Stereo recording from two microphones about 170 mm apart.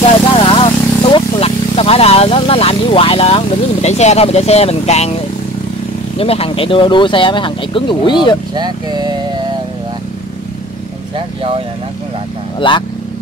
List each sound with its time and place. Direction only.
0.3 s speech: 30° left (ahead or behind)
6.1 s speech: 35° left (ahead or behind)
8.5 s speech: 25° right (ahead or behind)
11.1 s vehicle: 35° right (ahead or behind)
12.5 s speech: 30° left (ahead or behind)